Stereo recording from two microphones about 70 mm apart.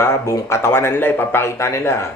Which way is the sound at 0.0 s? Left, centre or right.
Left.